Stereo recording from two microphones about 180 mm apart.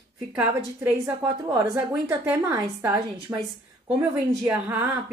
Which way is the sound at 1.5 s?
20° right (ahead or behind).